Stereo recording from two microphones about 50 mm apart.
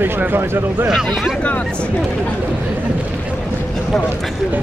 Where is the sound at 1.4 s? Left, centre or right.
Left.